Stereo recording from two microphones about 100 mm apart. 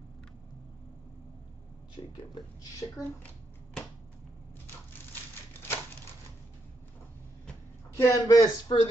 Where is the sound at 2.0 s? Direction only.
70° left (ahead or behind).